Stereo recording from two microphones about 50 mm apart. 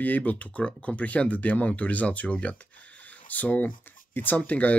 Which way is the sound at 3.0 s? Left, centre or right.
Left.